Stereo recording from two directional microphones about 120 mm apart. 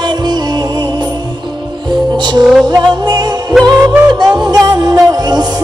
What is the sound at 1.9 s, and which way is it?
Music, 35° right (ahead or behind).